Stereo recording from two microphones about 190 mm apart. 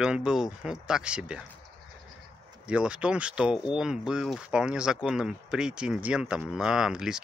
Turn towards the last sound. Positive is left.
turn(degrees=-5)  # may be behind; listen again after turning